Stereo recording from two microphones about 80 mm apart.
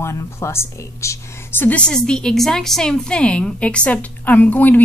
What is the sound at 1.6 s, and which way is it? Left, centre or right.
Speech, centre.